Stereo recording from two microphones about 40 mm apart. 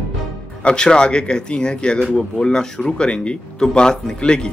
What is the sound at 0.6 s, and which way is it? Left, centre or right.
Speech, left.